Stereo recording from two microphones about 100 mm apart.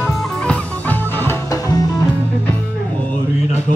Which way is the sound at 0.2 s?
10° left (ahead or behind).